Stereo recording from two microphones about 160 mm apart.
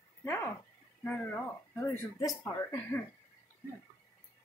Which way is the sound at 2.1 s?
20° left (ahead or behind).